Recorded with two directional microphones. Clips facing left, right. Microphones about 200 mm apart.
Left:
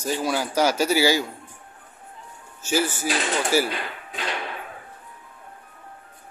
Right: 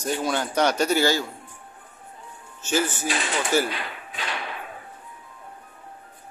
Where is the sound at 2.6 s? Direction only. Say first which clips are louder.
Left 1 dB; 10° left (ahead or behind).